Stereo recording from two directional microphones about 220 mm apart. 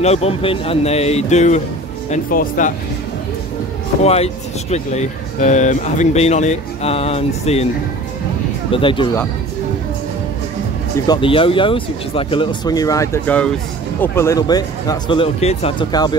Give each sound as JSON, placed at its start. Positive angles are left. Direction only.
{"t": 0.0, "sound": "speech", "side_deg": 30}
{"t": 4.0, "sound": "speech", "side_deg": 30}
{"t": 8.7, "sound": "speech", "side_deg": 25}
{"t": 11.1, "sound": "speech", "side_deg": 25}